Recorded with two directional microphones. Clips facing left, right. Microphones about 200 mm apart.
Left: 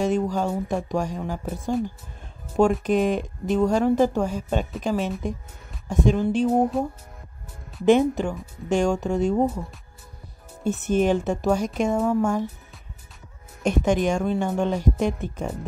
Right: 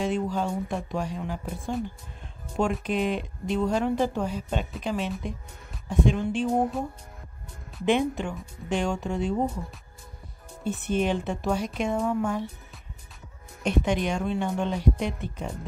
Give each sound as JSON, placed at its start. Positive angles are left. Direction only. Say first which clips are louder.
{"t": 0.0, "sound": "speech", "louder": "left 4 dB", "side_deg": 45}
{"t": 2.8, "sound": "speech", "louder": "left 5 dB", "side_deg": 45}
{"t": 7.8, "sound": "speech", "louder": "left 6 dB", "side_deg": 40}
{"t": 10.6, "sound": "speech", "louder": "left 5 dB", "side_deg": 45}
{"t": 13.6, "sound": "speech", "louder": "left 4 dB", "side_deg": 45}